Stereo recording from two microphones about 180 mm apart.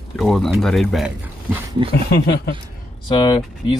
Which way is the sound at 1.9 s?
60° left (ahead or behind).